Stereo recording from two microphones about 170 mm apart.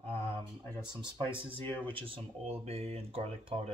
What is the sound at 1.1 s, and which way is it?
Speech, 30° right (ahead or behind).